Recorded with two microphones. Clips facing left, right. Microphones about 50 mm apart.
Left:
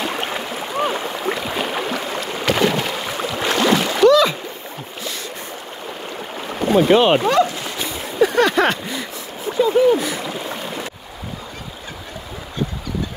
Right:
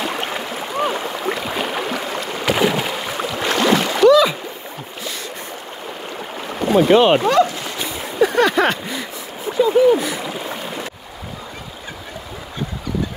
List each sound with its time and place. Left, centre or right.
0.0 s stream: centre
1.3 s boat: centre
6.3 s boat: centre
6.9 s speech: centre
7.2 s a sound: centre
7.5 s a sound: centre